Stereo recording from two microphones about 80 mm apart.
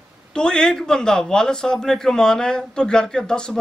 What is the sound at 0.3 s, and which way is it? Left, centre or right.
A man's voice, centre.